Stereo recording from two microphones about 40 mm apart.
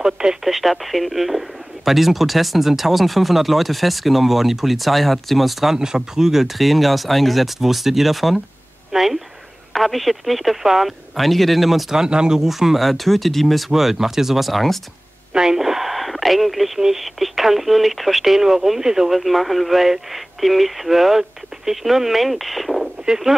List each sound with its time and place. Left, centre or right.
0.0 s speech: centre
0.5 s speech: centre
5.8 s speech: centre
12.0 s speech: centre
12.4 s speech: centre
13.7 s speech: centre
15.3 s speech: centre
23.0 s speech: centre